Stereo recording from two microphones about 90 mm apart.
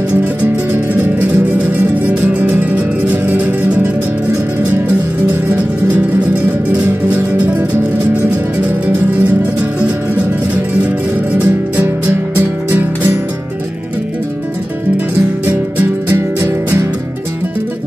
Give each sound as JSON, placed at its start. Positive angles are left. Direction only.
{"t": 2.0, "sound": "music", "side_deg": -15}
{"t": 6.8, "sound": "music", "side_deg": -20}
{"t": 9.8, "sound": "music", "side_deg": -15}
{"t": 16.3, "sound": "music", "side_deg": -20}